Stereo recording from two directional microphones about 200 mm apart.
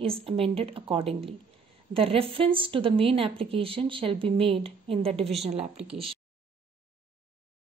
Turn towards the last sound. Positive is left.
turn(degrees=-30)  # may be behind; listen again after turning